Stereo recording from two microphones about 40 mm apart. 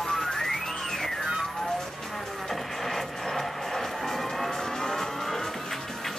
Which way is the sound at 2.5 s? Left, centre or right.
Centre.